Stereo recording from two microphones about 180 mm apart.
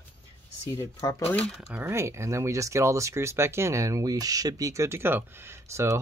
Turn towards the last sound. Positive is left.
turn(degrees=-15)  # may be behind; listen again after turning